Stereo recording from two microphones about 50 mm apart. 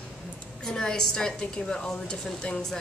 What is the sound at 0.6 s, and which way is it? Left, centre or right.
A woman's voice, centre.